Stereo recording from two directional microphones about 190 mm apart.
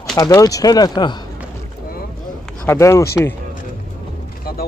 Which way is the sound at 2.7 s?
15° left (ahead or behind).